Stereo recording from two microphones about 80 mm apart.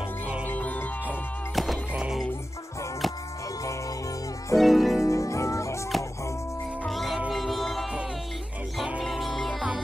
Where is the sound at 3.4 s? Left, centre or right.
Left.